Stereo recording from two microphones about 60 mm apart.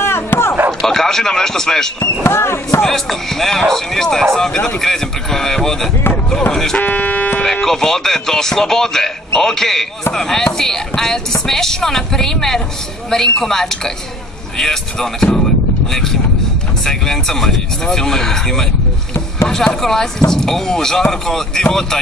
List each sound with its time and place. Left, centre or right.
0.0 s a sound: left
0.7 s a man's voice: centre
2.2 s speech: left
2.8 s speech: centre
6.8 s speech: left
7.6 s speech: centre